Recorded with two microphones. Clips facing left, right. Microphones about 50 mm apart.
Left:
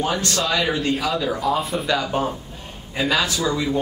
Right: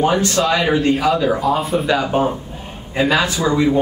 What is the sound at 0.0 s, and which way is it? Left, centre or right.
Speech, centre.